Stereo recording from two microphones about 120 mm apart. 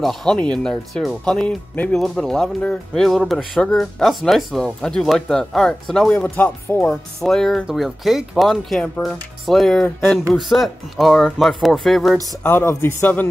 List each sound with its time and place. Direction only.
0.0 s speech: 5° left (ahead or behind)
12.4 s speech: 15° left (ahead or behind)